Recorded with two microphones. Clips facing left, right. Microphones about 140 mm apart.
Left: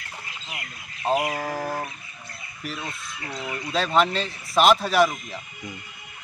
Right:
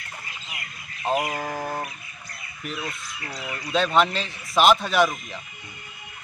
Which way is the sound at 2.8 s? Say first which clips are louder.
Right 1 dB; 25° left (ahead or behind).